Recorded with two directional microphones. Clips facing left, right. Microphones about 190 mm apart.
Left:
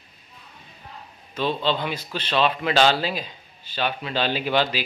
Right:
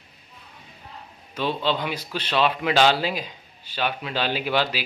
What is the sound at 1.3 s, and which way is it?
A man's voice, 10° right (ahead or behind).